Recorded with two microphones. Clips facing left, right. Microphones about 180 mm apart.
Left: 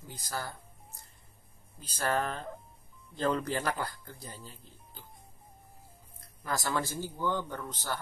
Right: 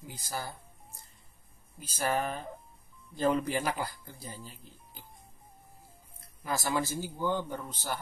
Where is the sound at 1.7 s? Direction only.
10° right (ahead or behind).